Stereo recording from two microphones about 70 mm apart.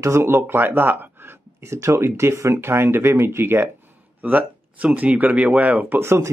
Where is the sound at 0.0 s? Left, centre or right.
Right.